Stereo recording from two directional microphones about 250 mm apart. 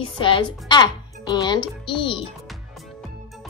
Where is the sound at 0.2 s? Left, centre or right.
Centre.